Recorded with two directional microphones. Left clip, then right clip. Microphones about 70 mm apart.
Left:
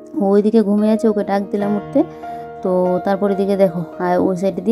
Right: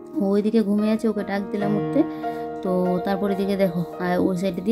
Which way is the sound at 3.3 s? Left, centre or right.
Left.